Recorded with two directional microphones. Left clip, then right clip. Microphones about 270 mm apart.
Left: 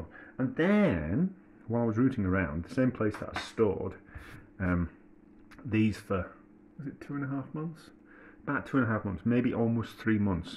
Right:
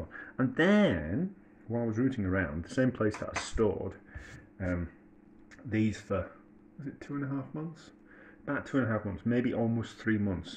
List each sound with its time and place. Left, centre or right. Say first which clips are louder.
0.1 s a sound: right 2 dB; centre
0.6 s speech: right 1 dB; centre
1.7 s speech: left 3 dB; left
5.7 s speech: left 2 dB; left
6.8 s speech: even; centre
8.5 s speech: left 2 dB; centre